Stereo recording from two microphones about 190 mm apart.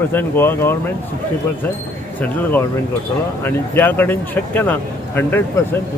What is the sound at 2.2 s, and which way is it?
Speech, 10° left (ahead or behind).